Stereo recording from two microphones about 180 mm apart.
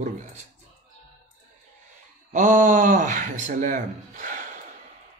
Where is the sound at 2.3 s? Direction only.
45° right (ahead or behind).